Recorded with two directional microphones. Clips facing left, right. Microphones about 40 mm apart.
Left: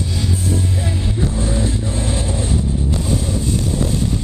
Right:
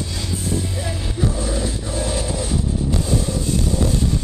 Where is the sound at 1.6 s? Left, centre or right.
Left.